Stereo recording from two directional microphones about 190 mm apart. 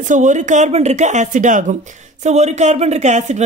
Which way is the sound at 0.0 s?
40° right (ahead or behind).